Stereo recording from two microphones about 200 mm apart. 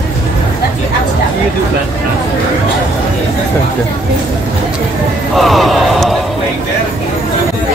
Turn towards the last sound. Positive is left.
turn(degrees=0)  # may be behind; listen again after turning